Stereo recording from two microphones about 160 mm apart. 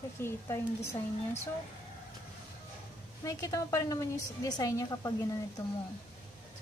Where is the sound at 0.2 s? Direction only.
15° left (ahead or behind).